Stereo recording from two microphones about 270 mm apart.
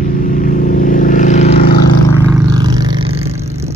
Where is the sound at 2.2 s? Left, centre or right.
Centre.